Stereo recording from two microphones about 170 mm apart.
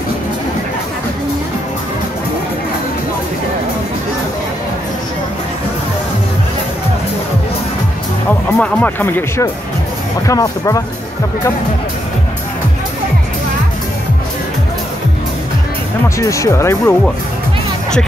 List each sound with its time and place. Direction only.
8.5 s speech: 10° left (ahead or behind)
16.2 s speech: 20° left (ahead or behind)